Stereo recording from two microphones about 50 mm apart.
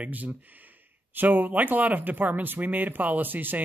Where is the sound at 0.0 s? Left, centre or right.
Right.